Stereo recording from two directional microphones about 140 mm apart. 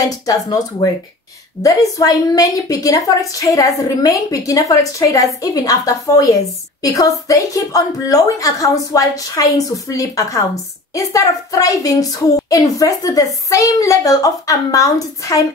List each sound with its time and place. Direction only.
0.3 s a woman's voice: 25° left (ahead or behind)